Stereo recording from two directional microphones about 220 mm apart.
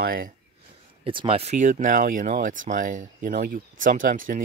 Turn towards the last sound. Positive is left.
turn(degrees=-40)  # may be behind; listen again after turning